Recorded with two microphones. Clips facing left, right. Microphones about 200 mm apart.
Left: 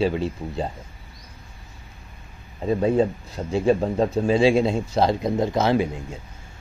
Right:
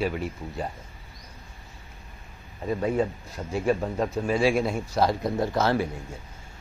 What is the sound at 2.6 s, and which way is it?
Speech, 25° left (ahead or behind).